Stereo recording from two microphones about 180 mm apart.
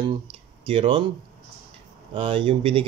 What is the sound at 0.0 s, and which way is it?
Speech, 30° right (ahead or behind).